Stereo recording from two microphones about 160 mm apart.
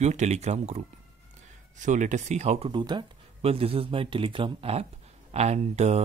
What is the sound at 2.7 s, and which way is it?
Speech, 30° right (ahead or behind).